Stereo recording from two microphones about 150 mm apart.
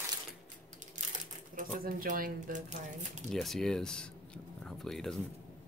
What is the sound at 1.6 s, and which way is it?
Speech, 70° right (ahead or behind).